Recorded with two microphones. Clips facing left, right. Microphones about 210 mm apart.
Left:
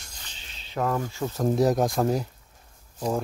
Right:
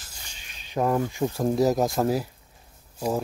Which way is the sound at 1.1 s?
15° right (ahead or behind).